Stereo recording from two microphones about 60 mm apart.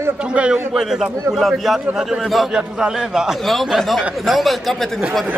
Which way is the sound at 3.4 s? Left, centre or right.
Centre.